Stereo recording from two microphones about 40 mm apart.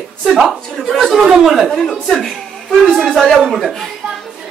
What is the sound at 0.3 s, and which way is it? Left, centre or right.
A man's voice, centre.